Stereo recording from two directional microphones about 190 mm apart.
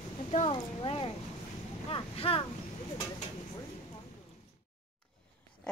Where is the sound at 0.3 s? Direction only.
30° left (ahead or behind).